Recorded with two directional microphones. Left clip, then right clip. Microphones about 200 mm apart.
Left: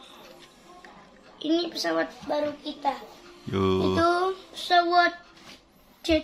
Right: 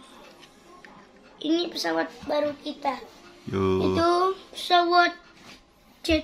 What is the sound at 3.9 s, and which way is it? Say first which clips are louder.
A child's voice: right 1 dB; 10° right (ahead or behind).